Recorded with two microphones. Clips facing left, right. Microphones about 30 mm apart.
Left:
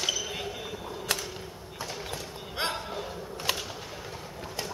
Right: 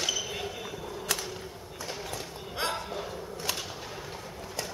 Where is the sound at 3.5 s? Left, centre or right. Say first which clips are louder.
Left 4 dB; left.